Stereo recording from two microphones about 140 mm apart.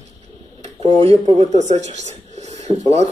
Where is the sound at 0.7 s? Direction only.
50° right (ahead or behind).